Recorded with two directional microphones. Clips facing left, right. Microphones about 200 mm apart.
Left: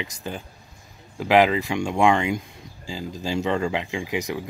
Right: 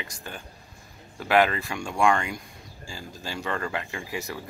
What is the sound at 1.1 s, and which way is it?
Speech, 15° left (ahead or behind).